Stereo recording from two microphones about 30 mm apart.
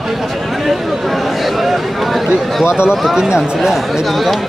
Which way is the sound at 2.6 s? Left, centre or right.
Right.